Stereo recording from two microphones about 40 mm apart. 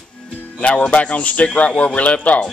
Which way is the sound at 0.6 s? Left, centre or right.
Left.